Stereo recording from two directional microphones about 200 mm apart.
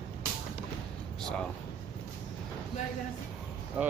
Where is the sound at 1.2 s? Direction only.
5° left (ahead or behind).